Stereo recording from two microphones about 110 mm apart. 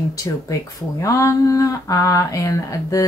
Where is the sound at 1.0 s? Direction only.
30° left (ahead or behind).